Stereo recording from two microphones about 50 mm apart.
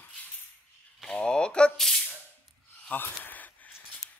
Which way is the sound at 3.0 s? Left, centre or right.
Left.